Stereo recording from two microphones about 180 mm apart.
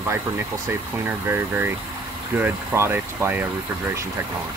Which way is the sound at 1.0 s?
10° right (ahead or behind).